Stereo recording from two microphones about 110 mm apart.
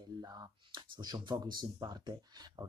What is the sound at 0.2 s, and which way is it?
Speech, 35° right (ahead or behind).